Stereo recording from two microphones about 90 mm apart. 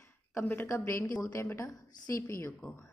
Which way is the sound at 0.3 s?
25° left (ahead or behind).